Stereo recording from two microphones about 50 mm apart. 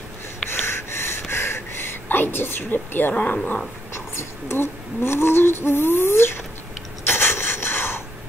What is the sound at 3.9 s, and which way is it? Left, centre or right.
Speech, left.